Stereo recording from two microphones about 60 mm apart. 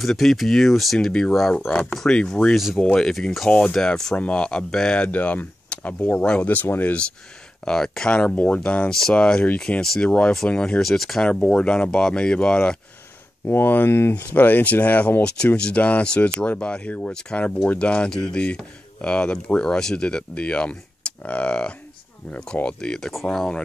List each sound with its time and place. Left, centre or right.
0.0 s speech: centre
0.9 s speech: centre
2.5 s speech: centre
2.8 s speech: centre; by 7.0 s left
7.6 s speech: centre
8.2 s speech: left
10.8 s speech: centre
11.2 s speech: centre
13.5 s speech: left
14.1 s speech: left
15.2 s speech: centre
17.1 s speech: centre